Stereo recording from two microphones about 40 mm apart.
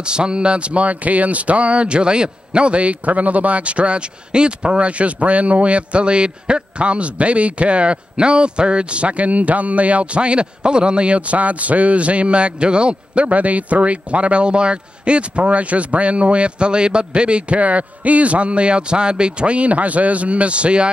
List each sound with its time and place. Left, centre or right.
0.0 s speech: right